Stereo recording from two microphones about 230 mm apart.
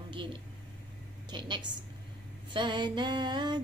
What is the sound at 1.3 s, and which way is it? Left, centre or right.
A woman's voice, centre.